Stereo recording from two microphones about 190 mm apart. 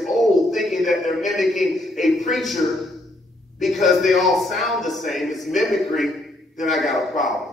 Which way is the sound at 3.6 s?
Centre (ahead or behind).